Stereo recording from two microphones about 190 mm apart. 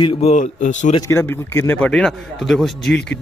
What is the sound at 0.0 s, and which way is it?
Speech, 30° left (ahead or behind).